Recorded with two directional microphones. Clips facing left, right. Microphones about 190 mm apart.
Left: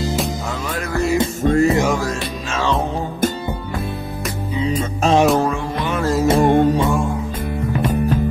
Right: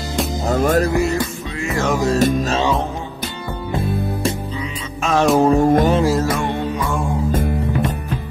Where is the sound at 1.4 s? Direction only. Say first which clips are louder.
Left 12 dB; 45° left (ahead or behind).